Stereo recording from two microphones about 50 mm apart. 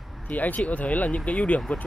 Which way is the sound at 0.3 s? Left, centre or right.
Left.